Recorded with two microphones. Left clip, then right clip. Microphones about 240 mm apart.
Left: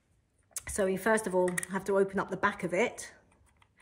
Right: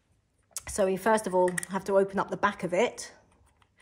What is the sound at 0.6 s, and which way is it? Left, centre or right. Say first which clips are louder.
Speech: right 3 dB; right.